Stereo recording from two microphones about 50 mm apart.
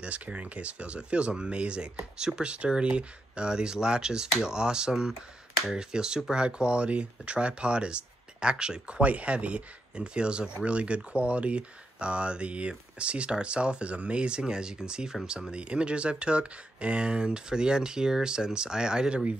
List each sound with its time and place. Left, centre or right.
0.0 s speech: right